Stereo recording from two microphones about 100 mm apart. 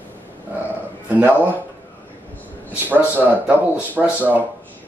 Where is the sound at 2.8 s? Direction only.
15° right (ahead or behind).